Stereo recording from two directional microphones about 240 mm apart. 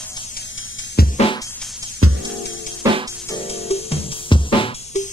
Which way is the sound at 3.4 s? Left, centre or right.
Left.